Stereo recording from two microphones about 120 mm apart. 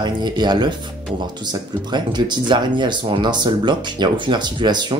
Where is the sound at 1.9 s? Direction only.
40° right (ahead or behind).